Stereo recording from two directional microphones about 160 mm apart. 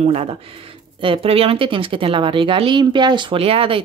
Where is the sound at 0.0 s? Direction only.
40° right (ahead or behind).